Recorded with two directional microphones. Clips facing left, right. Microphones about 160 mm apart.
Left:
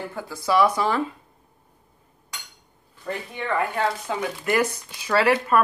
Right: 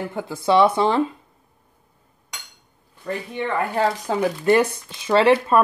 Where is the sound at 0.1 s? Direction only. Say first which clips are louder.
Right 4 dB; 20° right (ahead or behind).